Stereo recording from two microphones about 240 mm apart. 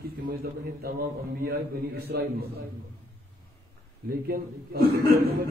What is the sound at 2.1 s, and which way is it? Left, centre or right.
Speech, right.